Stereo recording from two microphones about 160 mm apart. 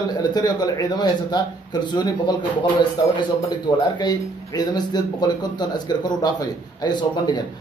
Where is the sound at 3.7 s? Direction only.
30° left (ahead or behind).